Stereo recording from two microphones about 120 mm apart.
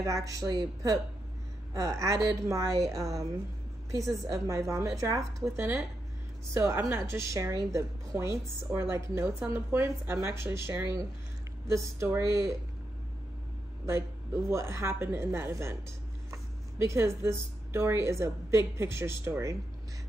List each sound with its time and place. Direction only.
0.0 s a woman's voice: 25° right (ahead or behind)
13.8 s a woman's voice: 25° right (ahead or behind)
16.3 s a sound: 25° right (ahead or behind)
18.0 s a woman's voice: 25° right (ahead or behind)